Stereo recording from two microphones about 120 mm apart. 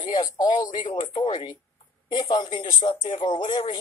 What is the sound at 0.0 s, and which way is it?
Speech, 35° left (ahead or behind).